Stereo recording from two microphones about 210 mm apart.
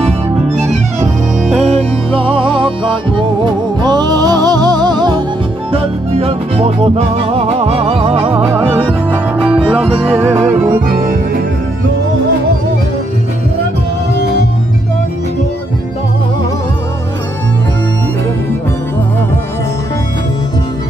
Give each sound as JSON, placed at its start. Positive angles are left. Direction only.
{"t": 1.5, "sound": "music", "side_deg": -30}
{"t": 8.4, "sound": "music", "side_deg": -10}
{"t": 9.9, "sound": "music", "side_deg": -30}
{"t": 10.2, "sound": "music", "side_deg": -10}
{"t": 10.9, "sound": "music", "side_deg": -40}